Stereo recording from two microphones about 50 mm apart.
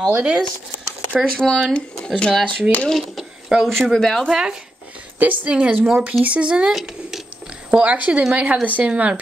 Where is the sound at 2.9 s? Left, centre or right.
Centre.